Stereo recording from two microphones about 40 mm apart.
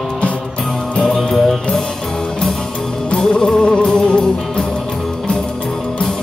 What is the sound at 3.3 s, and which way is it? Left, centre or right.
Music, left.